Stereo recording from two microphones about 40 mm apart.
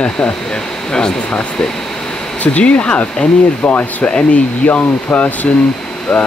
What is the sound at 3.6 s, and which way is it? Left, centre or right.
Speech, left.